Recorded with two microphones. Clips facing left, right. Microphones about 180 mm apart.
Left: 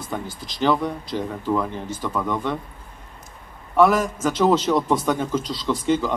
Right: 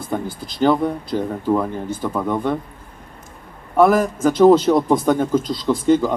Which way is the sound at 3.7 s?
50° right (ahead or behind).